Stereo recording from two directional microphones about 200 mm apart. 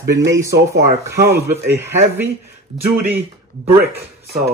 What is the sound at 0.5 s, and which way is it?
Speech, 55° right (ahead or behind).